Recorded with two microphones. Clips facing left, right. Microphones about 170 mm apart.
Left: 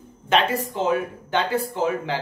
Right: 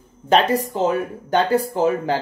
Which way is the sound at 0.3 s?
40° right (ahead or behind).